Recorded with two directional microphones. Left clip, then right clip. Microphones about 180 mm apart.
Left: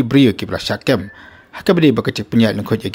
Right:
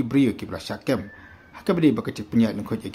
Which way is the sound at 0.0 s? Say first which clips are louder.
Left 9 dB; 35° left (ahead or behind).